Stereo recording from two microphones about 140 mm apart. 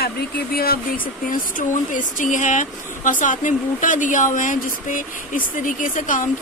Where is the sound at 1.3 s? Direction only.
70° left (ahead or behind).